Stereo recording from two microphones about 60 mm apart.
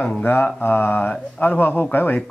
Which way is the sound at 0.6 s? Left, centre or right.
Left.